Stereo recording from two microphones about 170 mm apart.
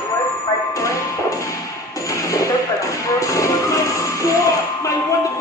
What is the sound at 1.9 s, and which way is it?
Music, 20° left (ahead or behind).